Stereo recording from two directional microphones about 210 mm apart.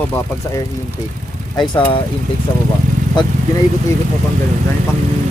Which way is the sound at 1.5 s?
25° left (ahead or behind).